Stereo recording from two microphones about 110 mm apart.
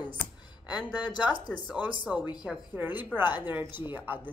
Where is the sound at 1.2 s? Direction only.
15° right (ahead or behind).